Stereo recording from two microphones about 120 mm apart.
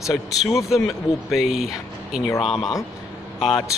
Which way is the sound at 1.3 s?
5° right (ahead or behind).